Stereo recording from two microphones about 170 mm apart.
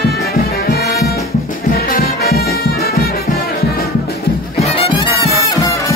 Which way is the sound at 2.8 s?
65° left (ahead or behind).